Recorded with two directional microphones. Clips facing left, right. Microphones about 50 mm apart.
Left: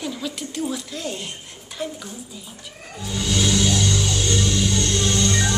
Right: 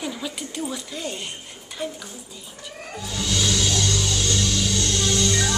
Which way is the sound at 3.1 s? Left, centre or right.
Centre.